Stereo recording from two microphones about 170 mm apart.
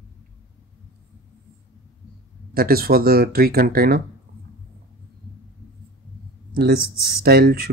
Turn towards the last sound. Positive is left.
turn(degrees=-65)  # may be behind; listen again after turning